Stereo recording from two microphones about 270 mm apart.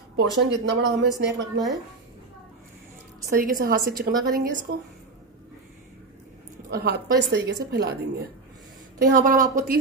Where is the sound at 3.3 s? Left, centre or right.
Right.